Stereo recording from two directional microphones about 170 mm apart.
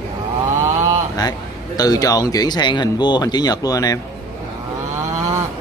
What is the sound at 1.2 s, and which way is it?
A man's voice, 20° left (ahead or behind).